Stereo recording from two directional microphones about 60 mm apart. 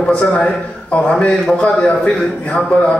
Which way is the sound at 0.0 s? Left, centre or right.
Centre.